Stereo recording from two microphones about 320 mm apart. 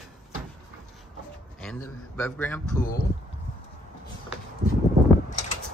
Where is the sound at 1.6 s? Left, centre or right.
Centre.